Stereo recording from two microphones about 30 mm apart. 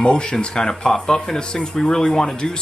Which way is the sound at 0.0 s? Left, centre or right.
Left.